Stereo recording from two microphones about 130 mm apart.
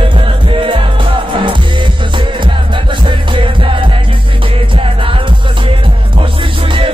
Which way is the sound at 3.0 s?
40° right (ahead or behind).